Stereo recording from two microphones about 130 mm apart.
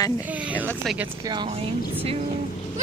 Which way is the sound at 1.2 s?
35° right (ahead or behind).